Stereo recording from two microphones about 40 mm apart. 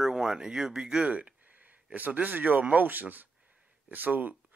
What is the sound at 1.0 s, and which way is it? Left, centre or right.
Speech, right.